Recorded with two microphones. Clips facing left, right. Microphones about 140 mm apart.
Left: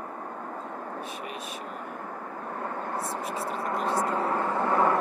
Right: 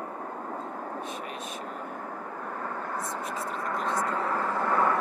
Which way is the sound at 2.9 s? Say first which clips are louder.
Left 2 dB; 30° left (ahead or behind).